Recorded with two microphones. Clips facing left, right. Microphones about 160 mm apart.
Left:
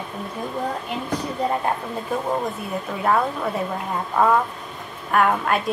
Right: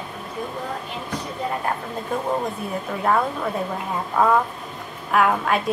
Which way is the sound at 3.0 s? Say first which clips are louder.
Even; centre (ahead or behind).